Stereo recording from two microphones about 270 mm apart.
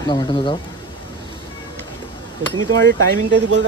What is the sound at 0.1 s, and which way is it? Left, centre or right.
Speech, centre.